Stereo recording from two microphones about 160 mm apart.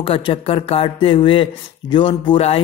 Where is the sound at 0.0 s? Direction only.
35° left (ahead or behind).